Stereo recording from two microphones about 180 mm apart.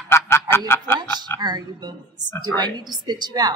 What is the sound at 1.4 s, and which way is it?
A woman's voice, 25° right (ahead or behind).